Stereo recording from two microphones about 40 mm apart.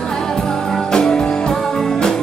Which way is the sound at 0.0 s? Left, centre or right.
Centre.